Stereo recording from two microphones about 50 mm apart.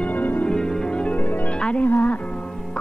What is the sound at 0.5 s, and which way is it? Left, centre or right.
Music, centre.